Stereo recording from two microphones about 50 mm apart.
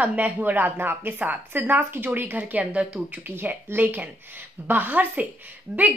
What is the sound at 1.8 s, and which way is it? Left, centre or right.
Speech, right.